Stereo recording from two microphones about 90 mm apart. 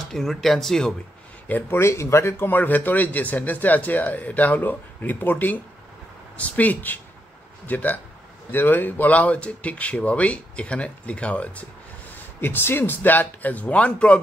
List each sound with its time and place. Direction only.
0.0 s speech: 5° left (ahead or behind)
1.5 s speech: 30° left (ahead or behind)